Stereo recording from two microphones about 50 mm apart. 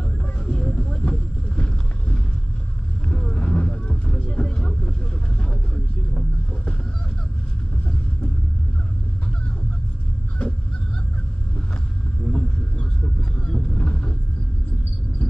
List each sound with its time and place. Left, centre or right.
0.4 s a sound: centre
1.0 s vehicle: left
12.3 s vehicle: centre